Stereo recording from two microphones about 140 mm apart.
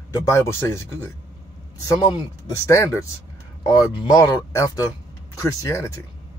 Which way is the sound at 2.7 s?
20° left (ahead or behind).